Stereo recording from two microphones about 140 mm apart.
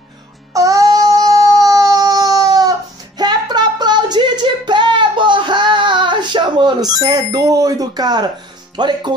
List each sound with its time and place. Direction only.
0.5 s child singing: 25° right (ahead or behind)
3.2 s a sound: 30° right (ahead or behind)
8.7 s speech: 30° right (ahead or behind)